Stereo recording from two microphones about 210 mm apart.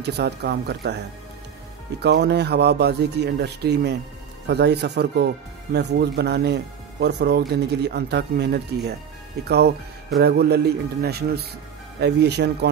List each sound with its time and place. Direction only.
0.0 s speech: 50° right (ahead or behind)
2.0 s speech: 50° right (ahead or behind)